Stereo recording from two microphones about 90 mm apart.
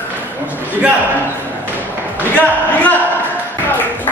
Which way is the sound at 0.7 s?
20° right (ahead or behind).